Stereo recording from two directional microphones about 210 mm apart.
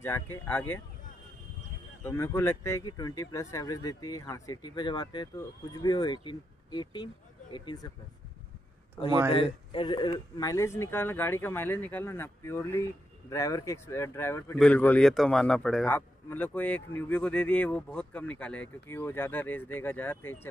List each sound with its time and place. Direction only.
0.0 s speech: 10° left (ahead or behind)
2.0 s speech: 10° left (ahead or behind)
9.3 s speech: 25° left (ahead or behind)